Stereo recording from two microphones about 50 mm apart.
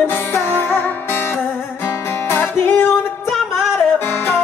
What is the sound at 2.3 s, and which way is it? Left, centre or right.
Music, left.